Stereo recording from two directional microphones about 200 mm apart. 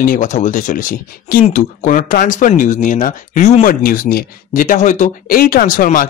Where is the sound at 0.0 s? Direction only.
40° left (ahead or behind).